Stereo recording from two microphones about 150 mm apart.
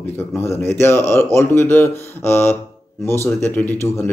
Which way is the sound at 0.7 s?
15° left (ahead or behind).